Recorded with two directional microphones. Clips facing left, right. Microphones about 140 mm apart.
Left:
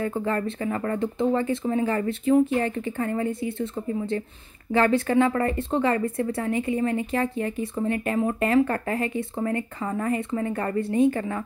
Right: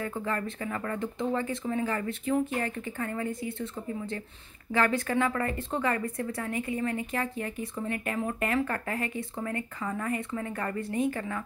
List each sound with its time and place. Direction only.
0.0 s speech: 35° left (ahead or behind)
4.7 s speech: 30° left (ahead or behind)